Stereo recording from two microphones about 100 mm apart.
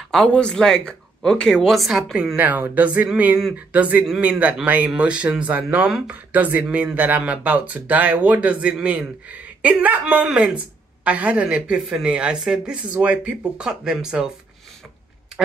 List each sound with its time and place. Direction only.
0.1 s speech: 10° left (ahead or behind)
2.3 s speech: 15° right (ahead or behind)